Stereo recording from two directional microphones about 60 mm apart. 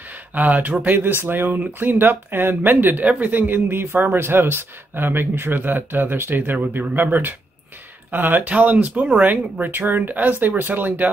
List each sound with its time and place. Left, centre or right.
0.3 s speech: right